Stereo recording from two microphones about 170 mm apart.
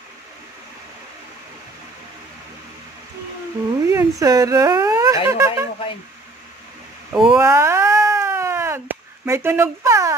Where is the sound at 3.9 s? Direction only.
20° right (ahead or behind).